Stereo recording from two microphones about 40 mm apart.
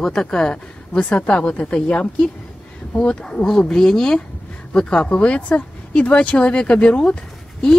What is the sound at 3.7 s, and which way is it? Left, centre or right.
Speech, centre.